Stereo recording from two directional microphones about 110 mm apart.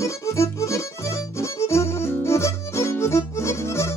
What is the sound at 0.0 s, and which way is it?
Music, 25° left (ahead or behind).